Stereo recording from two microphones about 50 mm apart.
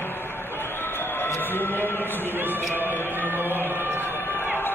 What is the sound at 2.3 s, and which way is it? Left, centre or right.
Music, right.